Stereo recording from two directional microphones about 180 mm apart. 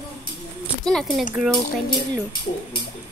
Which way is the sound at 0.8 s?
5° left (ahead or behind).